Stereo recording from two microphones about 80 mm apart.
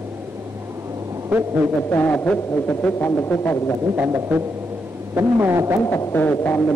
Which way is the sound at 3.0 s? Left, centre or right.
Left.